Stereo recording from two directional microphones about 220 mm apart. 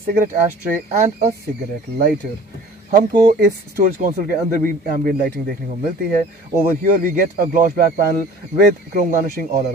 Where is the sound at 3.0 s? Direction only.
40° right (ahead or behind).